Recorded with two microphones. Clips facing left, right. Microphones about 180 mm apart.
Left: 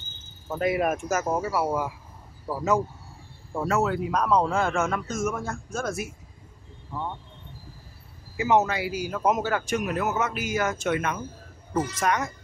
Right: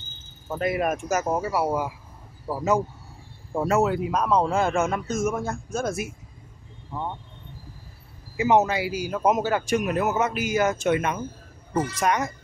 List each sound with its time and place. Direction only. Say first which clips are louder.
0.6 s cricket: even; 5° left (ahead or behind)
1.0 s a man's voice: right 1 dB; 15° right (ahead or behind)
4.5 s a man's voice: right 2 dB; 15° right (ahead or behind)
8.4 s a man's voice: right 2 dB; 15° right (ahead or behind)